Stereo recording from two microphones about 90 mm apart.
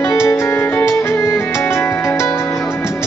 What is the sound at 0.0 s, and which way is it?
Music, 30° left (ahead or behind).